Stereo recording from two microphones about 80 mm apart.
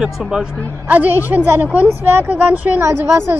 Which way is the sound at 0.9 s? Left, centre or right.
Centre.